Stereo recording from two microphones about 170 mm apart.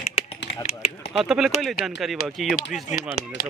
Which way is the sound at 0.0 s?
55° left (ahead or behind).